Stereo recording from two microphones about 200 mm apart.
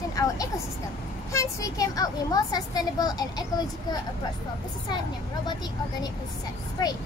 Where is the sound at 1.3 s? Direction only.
15° left (ahead or behind).